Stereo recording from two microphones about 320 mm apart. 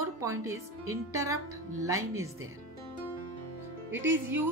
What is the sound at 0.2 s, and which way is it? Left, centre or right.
Speech, centre.